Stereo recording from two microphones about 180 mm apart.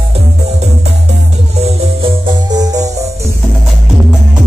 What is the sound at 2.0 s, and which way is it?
Music, 25° right (ahead or behind).